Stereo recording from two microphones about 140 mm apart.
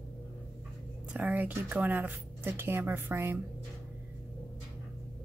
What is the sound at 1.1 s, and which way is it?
Speech, 10° right (ahead or behind).